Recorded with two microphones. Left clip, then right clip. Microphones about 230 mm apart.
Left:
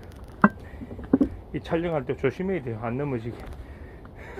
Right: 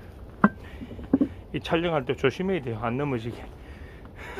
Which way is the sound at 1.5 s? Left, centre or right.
Centre.